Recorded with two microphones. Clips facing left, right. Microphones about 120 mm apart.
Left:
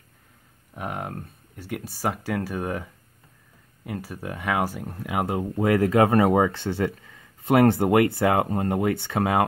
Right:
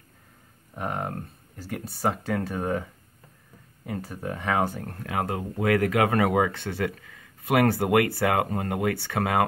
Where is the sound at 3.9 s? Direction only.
Centre (ahead or behind).